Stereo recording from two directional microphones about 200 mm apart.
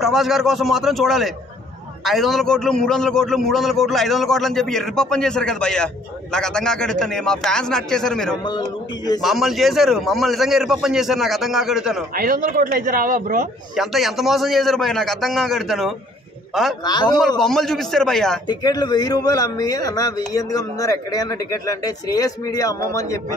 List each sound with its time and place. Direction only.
0.0 s a man's voice: centre (ahead or behind)
8.5 s speech: 20° left (ahead or behind)
9.2 s a man's voice: centre (ahead or behind)
12.1 s speech: 45° right (ahead or behind)
13.7 s a man's voice: centre (ahead or behind)
16.8 s speech: 20° left (ahead or behind)
17.4 s a man's voice: centre (ahead or behind)
18.5 s speech: 20° left (ahead or behind)